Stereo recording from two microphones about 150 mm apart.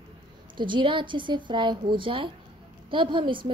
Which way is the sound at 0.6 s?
30° right (ahead or behind).